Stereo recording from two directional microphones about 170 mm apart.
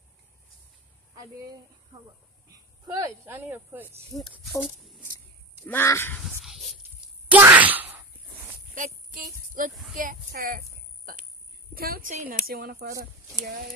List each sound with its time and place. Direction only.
2.5 s speech: 20° right (ahead or behind)
4.1 s speech: 15° left (ahead or behind)
4.5 s speech: centre (ahead or behind)
5.7 s speech: 15° left (ahead or behind)
6.4 s wail: centre (ahead or behind)
8.7 s a sound: 50° right (ahead or behind)
9.9 s speech: 55° right (ahead or behind)
11.7 s a woman's voice: 60° right (ahead or behind)
12.1 s speech: 45° right (ahead or behind)